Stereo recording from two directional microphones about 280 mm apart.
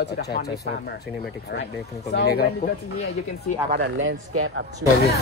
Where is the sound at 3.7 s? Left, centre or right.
Right.